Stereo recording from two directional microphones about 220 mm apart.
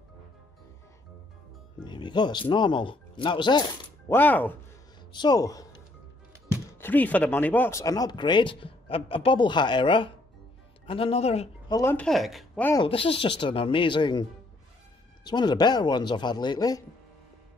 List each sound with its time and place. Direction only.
1.9 s speech: 20° left (ahead or behind)
4.1 s speech: 10° left (ahead or behind)
5.1 s a man's voice: 20° left (ahead or behind)
6.8 s speech: 10° left (ahead or behind); by 11.4 s 30° left (ahead or behind)
11.7 s speech: 10° left (ahead or behind)
12.7 s speech: 25° left (ahead or behind)
15.2 s speech: 20° left (ahead or behind)